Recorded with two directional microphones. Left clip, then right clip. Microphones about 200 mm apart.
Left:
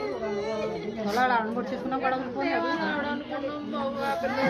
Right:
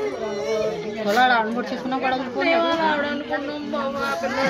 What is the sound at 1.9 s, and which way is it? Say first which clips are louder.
Chatter: right 4 dB; 45° right (ahead or behind).